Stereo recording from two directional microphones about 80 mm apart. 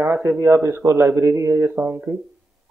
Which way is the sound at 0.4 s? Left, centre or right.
Right.